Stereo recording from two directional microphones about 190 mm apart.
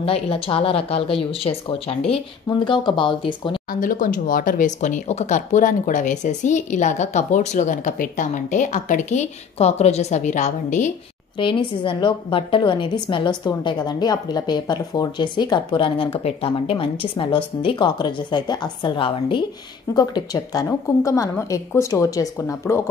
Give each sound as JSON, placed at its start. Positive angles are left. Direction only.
{"t": 0.0, "sound": "a woman's voice", "side_deg": 30}
{"t": 3.8, "sound": "speech", "side_deg": 45}
{"t": 11.3, "sound": "a woman's voice", "side_deg": 25}